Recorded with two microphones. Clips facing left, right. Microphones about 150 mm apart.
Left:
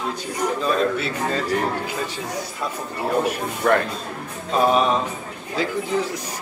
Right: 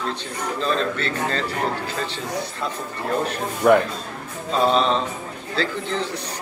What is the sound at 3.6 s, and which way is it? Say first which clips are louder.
Speech: right 4 dB; 10° right (ahead or behind).